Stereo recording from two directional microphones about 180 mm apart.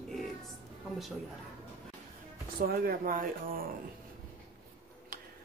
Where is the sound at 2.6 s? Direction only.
55° right (ahead or behind).